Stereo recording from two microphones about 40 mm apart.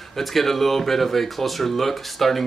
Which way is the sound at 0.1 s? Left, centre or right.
Centre.